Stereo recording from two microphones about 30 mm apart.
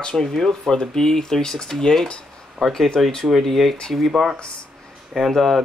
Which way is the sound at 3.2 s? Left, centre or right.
Centre.